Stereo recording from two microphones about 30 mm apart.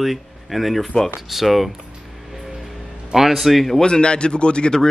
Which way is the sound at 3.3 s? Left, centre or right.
Centre.